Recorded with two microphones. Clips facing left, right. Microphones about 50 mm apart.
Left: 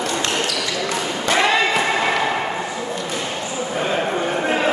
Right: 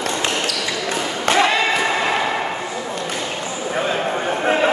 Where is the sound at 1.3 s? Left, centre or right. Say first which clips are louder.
Right 2 dB; right.